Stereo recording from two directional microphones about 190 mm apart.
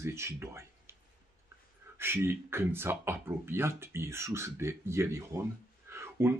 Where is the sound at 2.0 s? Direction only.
10° right (ahead or behind).